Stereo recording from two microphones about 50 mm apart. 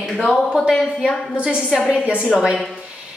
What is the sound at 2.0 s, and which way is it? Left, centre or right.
Speech, right.